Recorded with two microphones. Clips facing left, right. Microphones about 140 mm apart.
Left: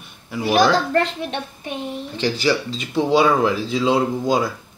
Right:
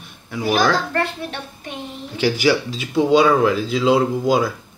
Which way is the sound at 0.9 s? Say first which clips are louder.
Left 3 dB; 25° left (ahead or behind).